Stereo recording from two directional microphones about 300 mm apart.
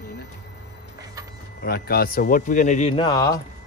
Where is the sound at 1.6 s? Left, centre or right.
Left.